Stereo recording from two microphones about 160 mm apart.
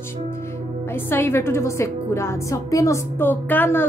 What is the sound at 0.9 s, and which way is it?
A woman's voice, 15° left (ahead or behind).